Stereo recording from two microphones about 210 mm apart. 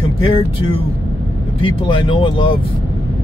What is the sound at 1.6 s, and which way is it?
Speech, 25° left (ahead or behind).